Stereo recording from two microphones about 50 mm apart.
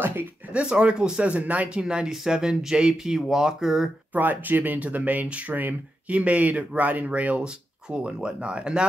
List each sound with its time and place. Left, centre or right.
0.0 s a sound: right
0.5 s speech: right
1.3 s speech: right; by 3.9 s centre
4.1 s speech: right
6.0 s speech: right